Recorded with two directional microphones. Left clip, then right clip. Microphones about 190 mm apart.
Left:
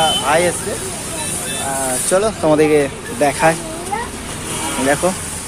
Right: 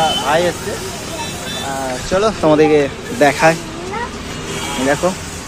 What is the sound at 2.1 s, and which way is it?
Speech, 30° left (ahead or behind).